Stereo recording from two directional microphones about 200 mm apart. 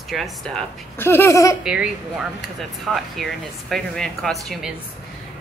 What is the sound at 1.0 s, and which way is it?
Speech, 10° left (ahead or behind).